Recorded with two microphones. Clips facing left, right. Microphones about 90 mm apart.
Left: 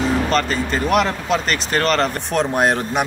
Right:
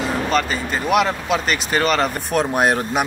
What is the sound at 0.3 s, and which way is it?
Speech, 5° right (ahead or behind).